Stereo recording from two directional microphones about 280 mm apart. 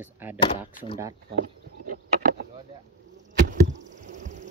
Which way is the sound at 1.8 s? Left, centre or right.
Right.